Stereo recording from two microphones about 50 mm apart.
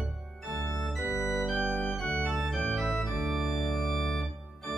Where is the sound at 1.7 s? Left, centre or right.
Left.